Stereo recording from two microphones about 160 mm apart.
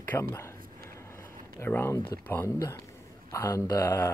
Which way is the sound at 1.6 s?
15° left (ahead or behind).